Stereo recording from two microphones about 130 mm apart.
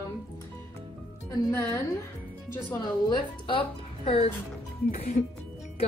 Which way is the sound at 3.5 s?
45° left (ahead or behind).